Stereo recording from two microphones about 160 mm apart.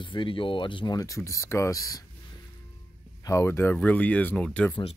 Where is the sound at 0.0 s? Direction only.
30° left (ahead or behind).